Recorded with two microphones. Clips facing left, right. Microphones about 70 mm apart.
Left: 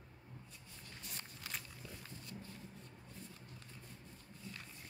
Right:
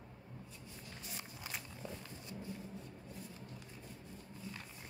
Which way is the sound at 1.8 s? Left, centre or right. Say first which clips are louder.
Right 5 dB; centre.